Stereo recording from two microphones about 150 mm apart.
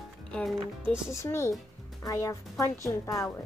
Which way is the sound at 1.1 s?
20° left (ahead or behind).